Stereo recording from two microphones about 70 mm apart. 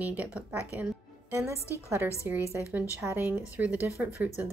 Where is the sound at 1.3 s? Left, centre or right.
Right.